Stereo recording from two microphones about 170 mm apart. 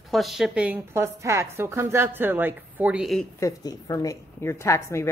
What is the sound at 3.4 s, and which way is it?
A woman's voice, 20° left (ahead or behind).